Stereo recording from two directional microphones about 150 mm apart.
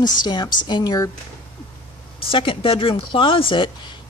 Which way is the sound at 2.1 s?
35° left (ahead or behind).